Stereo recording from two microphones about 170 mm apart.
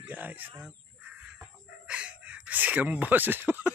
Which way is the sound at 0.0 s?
10° right (ahead or behind).